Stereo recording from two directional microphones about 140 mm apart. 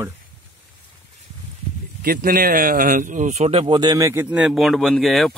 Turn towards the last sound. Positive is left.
turn(degrees=0)  # may be behind; listen again after turning